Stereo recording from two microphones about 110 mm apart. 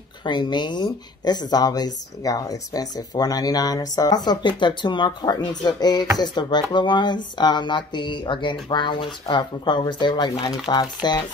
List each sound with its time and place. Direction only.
0.2 s speech: 45° left (ahead or behind)